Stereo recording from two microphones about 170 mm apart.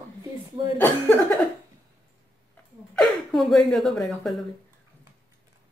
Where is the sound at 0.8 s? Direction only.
10° left (ahead or behind).